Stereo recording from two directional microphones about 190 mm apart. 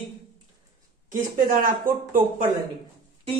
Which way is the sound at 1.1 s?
45° right (ahead or behind).